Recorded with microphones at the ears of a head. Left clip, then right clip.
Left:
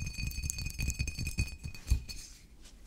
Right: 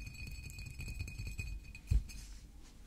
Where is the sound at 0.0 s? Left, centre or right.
Left.